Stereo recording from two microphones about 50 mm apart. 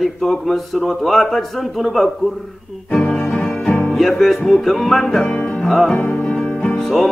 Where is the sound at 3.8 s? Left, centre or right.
Centre.